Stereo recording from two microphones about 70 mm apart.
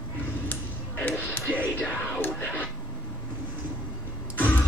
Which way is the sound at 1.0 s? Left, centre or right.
Left.